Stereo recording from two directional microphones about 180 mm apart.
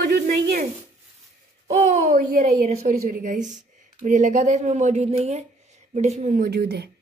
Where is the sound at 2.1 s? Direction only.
45° right (ahead or behind).